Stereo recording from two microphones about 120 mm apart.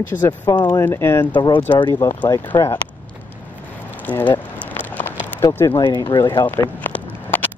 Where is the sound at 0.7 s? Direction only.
20° left (ahead or behind).